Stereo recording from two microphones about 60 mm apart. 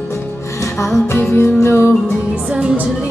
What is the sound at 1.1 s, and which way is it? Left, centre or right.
Music, left.